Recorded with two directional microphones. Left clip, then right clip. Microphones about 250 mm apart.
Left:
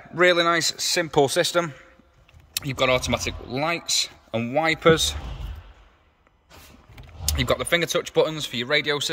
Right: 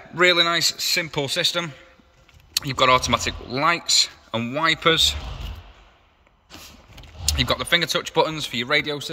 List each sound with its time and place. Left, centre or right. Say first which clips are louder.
0.1 s speech: right 1 dB; centre
2.5 s speech: right 4 dB; centre
7.2 s speech: right 1 dB; centre